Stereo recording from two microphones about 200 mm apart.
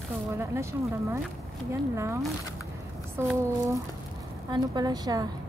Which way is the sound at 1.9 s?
15° right (ahead or behind).